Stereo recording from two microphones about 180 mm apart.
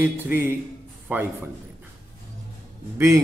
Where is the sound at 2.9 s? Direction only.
15° right (ahead or behind).